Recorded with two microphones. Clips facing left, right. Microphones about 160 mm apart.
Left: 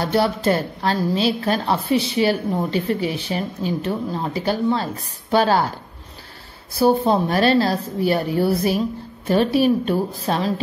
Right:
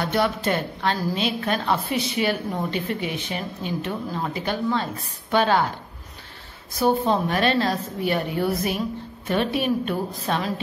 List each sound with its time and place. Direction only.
0.0 s a woman's voice: 35° left (ahead or behind)
6.7 s a woman's voice: 35° left (ahead or behind)